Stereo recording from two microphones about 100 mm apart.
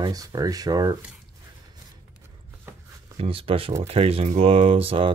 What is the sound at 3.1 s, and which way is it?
Speech, 70° right (ahead or behind).